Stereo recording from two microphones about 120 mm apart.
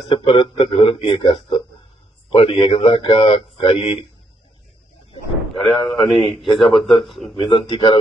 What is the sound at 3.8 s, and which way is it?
Speech, 55° left (ahead or behind).